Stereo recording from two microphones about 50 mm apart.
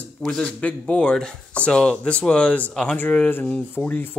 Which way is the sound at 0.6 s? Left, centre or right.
Left.